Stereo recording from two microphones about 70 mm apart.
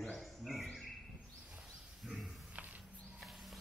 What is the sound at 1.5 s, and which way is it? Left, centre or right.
Wild animals, centre.